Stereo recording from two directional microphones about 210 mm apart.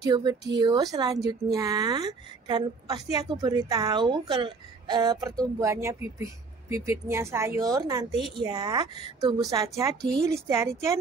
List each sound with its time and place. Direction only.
0.0 s a woman's voice: 20° right (ahead or behind)